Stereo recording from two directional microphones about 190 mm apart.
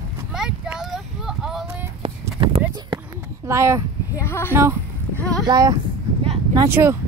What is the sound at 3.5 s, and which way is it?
Speech, 15° right (ahead or behind).